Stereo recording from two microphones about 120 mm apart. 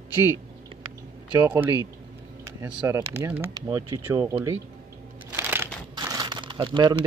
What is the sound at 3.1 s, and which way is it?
Speech, 15° right (ahead or behind).